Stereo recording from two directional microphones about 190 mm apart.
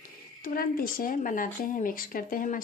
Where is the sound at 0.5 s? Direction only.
50° left (ahead or behind).